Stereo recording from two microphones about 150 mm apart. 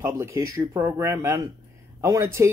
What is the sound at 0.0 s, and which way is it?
Speech, 15° right (ahead or behind).